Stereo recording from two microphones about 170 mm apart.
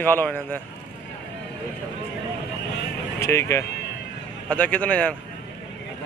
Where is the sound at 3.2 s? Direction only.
15° left (ahead or behind).